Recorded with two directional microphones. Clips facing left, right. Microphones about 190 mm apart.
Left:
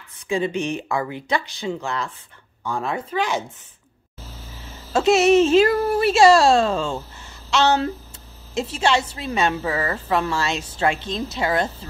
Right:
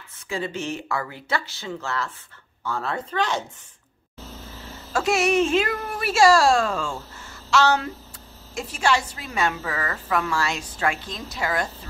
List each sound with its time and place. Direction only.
0.3 s speech: 15° left (ahead or behind)
4.9 s speech: 20° left (ahead or behind)